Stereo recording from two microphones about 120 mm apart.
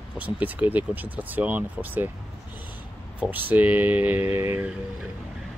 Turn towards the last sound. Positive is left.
turn(degrees=-20)  # may be behind; listen again after turning